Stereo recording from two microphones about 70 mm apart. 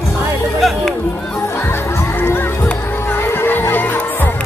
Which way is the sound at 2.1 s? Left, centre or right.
Left.